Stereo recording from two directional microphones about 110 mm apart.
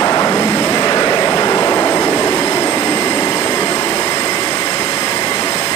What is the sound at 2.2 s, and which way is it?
Train, 40° left (ahead or behind).